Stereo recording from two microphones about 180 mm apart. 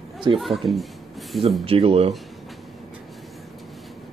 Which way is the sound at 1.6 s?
30° right (ahead or behind).